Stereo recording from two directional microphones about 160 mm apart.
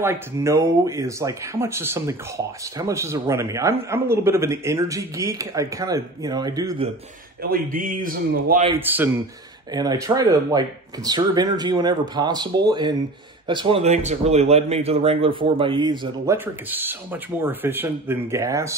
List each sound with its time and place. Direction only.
0.0 s speech: 15° right (ahead or behind)
7.4 s speech: 65° right (ahead or behind)
8.7 s speech: 10° right (ahead or behind)
9.7 s a man's voice: 25° right (ahead or behind)
16.3 s speech: 10° right (ahead or behind)